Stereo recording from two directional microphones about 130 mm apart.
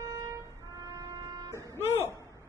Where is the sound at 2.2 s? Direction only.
25° right (ahead or behind).